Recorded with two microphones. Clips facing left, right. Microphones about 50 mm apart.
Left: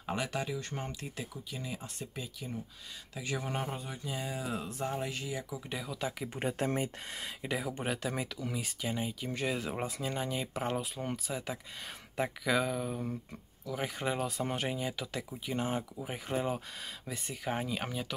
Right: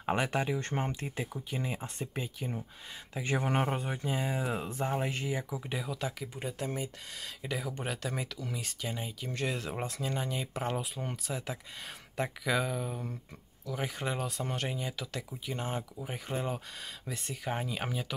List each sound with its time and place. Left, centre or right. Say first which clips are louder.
0.0 s speech: right 4 dB; right
5.7 s speech: left 1 dB; centre
6.3 s speech: left 4 dB; left
7.4 s speech: left 1 dB; centre